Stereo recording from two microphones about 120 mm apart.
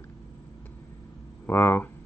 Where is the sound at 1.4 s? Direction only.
15° left (ahead or behind).